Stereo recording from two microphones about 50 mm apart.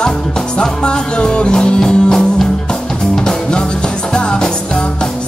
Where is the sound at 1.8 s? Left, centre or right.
Centre.